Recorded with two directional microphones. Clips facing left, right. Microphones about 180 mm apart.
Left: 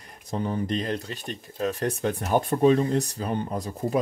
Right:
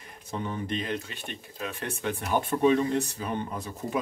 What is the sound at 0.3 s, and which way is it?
Speech, 35° left (ahead or behind).